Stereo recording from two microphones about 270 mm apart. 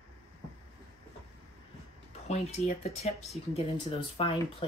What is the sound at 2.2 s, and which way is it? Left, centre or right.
Speech, left.